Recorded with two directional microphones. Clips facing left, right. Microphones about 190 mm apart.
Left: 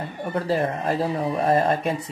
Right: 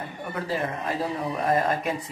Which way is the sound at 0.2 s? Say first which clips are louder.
Left 6 dB; 35° left (ahead or behind).